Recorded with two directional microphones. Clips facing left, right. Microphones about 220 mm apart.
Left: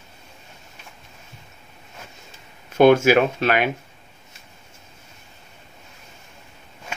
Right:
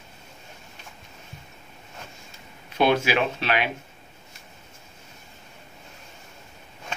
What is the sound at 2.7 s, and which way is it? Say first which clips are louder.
Speech: left 8 dB; 45° left (ahead or behind).